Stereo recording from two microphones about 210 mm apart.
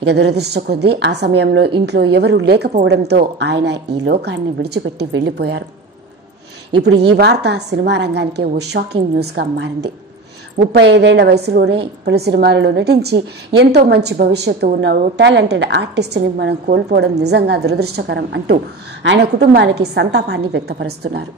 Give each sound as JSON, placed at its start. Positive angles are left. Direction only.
{"t": 0.0, "sound": "a woman's voice", "side_deg": -50}
{"t": 6.8, "sound": "a woman's voice", "side_deg": -50}